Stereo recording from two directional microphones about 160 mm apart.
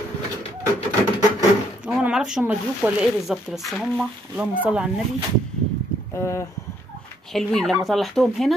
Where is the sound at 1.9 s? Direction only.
5° right (ahead or behind).